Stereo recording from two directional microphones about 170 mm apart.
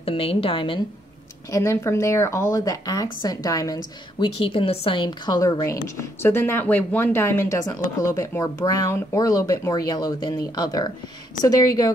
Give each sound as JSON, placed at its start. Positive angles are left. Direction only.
{"t": 0.0, "sound": "a woman's voice", "side_deg": 35}
{"t": 1.5, "sound": "speech", "side_deg": 15}